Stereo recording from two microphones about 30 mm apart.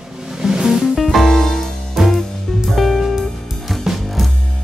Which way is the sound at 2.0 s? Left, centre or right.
Centre.